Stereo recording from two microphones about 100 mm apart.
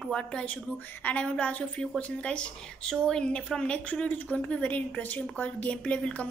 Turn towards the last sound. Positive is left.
turn(degrees=10)  # may be behind; listen again after turning